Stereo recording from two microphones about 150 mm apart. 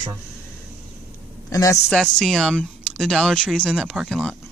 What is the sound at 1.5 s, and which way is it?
Speech, 20° left (ahead or behind).